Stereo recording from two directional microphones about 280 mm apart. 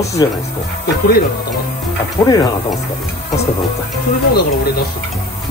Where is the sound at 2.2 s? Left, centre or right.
Centre.